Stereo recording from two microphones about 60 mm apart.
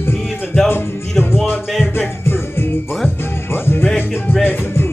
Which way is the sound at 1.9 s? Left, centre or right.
Left.